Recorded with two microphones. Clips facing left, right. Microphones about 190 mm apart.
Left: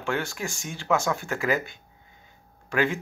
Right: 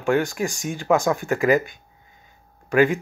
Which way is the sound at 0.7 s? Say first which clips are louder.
Right 5 dB; 50° right (ahead or behind).